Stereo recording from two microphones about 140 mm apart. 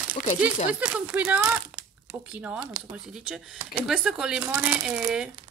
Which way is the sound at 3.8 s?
5° right (ahead or behind).